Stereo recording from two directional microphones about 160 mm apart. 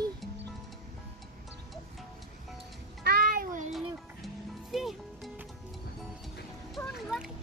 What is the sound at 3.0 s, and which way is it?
Music, 75° right (ahead or behind).